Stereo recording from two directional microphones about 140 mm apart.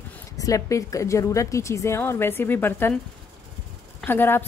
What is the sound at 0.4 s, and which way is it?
A woman's voice, 25° left (ahead or behind).